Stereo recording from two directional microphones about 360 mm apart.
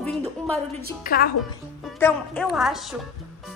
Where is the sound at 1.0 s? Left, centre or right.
Left.